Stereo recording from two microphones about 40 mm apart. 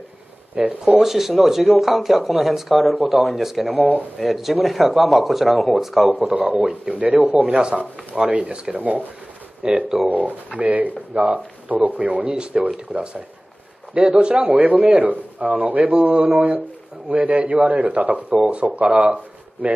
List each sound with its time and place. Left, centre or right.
0.6 s speech: right
0.9 s speech: centre
6.3 s a man's voice: right
6.6 s speech: right
7.0 s a man's voice: right
7.4 s speech: right
8.7 s a man's voice: right
9.6 s speech: right
10.6 s a man's voice: right
12.3 s a man's voice: right
18.3 s a man's voice: right